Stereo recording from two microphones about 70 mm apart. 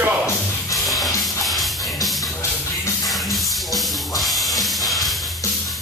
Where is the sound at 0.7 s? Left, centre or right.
Centre.